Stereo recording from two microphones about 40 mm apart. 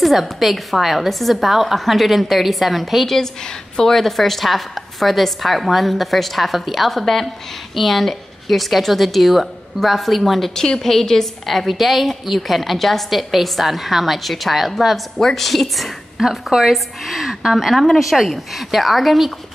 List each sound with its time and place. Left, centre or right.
0.0 s a woman's voice: centre
10.5 s a woman's voice: centre